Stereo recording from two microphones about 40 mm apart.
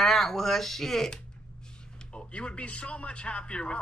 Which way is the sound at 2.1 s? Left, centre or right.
Left.